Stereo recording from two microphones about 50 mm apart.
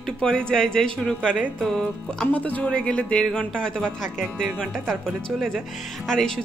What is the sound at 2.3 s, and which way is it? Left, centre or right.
Speech, left.